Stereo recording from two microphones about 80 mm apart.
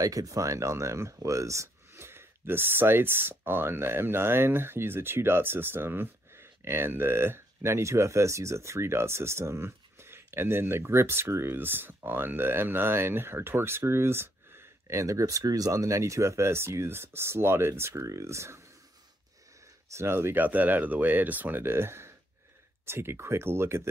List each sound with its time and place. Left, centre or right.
0.0 s speech: right
19.9 s speech: right